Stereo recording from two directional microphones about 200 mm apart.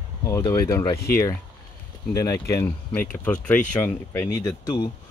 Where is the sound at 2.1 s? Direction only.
15° left (ahead or behind).